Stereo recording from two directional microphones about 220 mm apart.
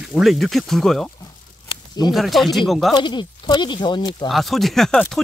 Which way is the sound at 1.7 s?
20° left (ahead or behind).